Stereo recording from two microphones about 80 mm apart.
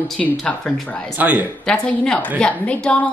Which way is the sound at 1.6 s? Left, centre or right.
Centre.